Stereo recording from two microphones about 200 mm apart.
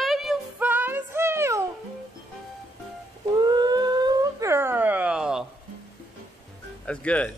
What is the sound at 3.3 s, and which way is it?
Howl, 20° right (ahead or behind).